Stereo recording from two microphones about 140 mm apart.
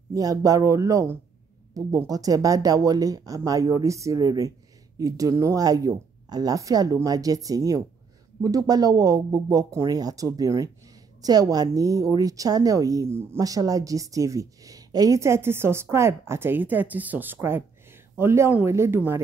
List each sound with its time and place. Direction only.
0.1 s a woman's voice: 25° right (ahead or behind)